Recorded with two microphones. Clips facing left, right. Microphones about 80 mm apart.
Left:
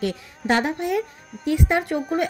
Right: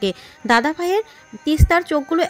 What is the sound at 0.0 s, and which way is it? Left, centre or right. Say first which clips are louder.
A woman's voice: right 4 dB; right.